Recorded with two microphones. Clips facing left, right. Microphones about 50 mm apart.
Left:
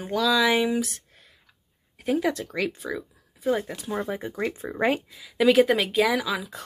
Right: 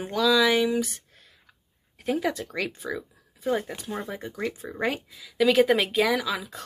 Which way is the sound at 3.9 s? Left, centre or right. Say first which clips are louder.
Left 4 dB; centre.